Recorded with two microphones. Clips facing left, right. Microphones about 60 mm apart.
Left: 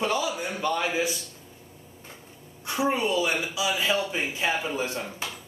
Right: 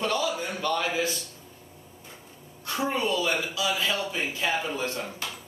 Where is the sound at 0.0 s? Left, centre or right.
Centre.